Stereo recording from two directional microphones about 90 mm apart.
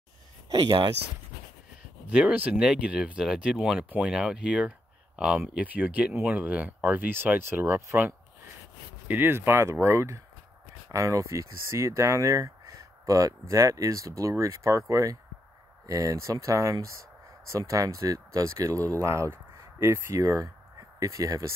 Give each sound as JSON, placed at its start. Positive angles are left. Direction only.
{"t": 0.5, "sound": "speech", "side_deg": -50}
{"t": 2.0, "sound": "speech", "side_deg": -15}